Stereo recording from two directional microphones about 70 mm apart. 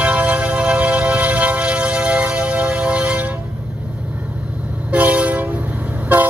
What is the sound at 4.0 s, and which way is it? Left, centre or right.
Train, centre.